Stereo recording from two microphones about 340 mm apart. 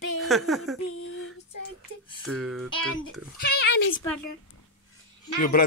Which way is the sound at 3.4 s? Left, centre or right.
Left.